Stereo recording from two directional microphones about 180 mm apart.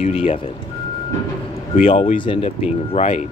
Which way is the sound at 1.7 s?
30° left (ahead or behind).